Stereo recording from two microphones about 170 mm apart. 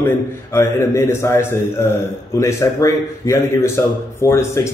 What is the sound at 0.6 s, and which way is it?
A man's voice, 15° left (ahead or behind).